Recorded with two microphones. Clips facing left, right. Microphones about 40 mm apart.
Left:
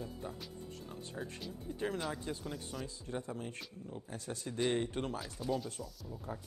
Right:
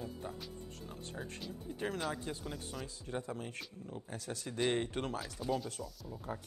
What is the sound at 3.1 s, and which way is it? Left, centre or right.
Speech, right.